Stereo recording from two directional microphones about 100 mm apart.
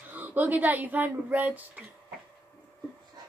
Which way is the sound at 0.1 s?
15° right (ahead or behind).